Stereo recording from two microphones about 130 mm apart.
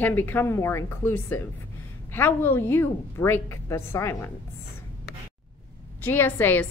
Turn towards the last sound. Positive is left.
turn(degrees=15)  # may be behind; listen again after turning